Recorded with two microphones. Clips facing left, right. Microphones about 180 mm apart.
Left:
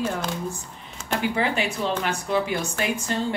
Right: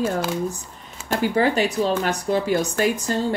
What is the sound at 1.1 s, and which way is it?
Speech, 40° right (ahead or behind).